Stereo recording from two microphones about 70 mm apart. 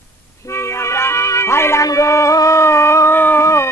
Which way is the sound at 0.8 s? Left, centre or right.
Left.